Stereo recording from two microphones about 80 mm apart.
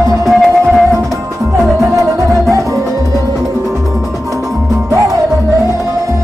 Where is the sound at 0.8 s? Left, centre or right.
Right.